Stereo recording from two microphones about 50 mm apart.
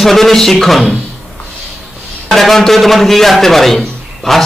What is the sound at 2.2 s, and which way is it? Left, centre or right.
A man's voice, centre.